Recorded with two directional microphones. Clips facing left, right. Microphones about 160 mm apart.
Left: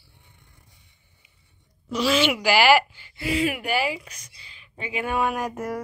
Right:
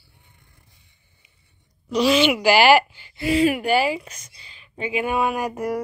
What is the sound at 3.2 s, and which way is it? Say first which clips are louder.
Speech: right 6 dB; 35° right (ahead or behind).